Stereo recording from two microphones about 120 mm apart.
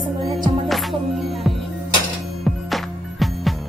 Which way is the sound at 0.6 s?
Centre (ahead or behind).